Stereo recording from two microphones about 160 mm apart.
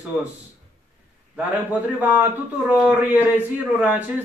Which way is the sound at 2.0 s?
10° right (ahead or behind).